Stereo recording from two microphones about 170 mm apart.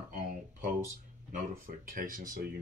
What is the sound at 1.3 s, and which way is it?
Speech, 50° right (ahead or behind).